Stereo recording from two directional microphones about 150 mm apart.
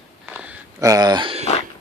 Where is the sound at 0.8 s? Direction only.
25° right (ahead or behind).